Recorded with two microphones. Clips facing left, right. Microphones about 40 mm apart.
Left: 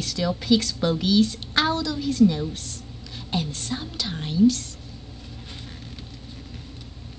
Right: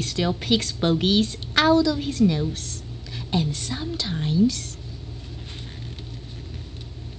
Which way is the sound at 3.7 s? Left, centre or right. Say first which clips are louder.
Even; centre.